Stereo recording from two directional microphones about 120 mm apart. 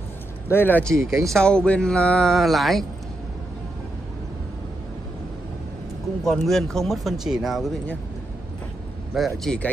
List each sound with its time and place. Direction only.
0.5 s speech: 15° left (ahead or behind)
0.9 s speech: 25° right (ahead or behind)
1.3 s speech: 5° left (ahead or behind)
6.2 s speech: centre (ahead or behind)
9.1 s speech: centre (ahead or behind)